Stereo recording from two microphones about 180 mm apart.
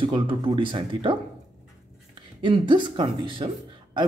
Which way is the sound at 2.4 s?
25° right (ahead or behind).